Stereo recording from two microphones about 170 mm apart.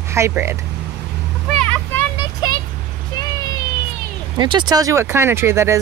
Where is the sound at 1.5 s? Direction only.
10° left (ahead or behind).